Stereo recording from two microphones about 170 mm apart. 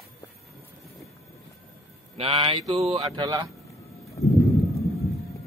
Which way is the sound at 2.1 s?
30° right (ahead or behind).